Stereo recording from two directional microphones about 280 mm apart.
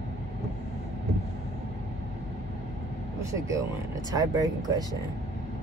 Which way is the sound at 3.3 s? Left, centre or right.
Centre.